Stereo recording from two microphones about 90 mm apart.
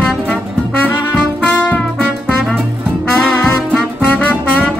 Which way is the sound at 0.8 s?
10° left (ahead or behind).